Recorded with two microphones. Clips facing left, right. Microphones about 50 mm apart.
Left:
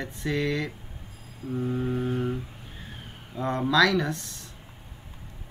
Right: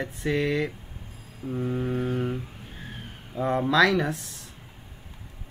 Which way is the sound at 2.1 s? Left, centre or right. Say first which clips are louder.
Even; centre.